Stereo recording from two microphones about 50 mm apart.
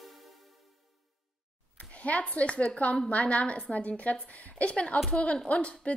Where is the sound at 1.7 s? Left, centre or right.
Left.